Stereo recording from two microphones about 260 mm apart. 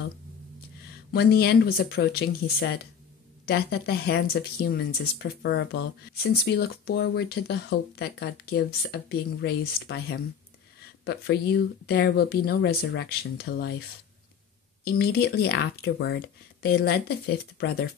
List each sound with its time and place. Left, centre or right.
1.1 s speech: left
14.9 s speech: left